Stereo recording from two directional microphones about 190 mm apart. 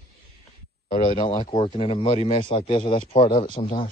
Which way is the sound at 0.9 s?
30° left (ahead or behind).